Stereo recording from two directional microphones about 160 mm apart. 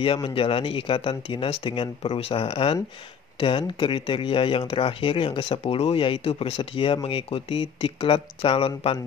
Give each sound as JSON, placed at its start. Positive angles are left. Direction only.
{"t": 0.0, "sound": "speech", "side_deg": 35}